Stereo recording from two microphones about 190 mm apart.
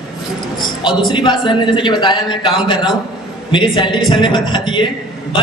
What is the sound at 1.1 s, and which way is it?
A man's voice, 25° left (ahead or behind).